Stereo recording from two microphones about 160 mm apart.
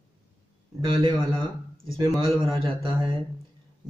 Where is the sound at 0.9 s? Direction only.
25° right (ahead or behind).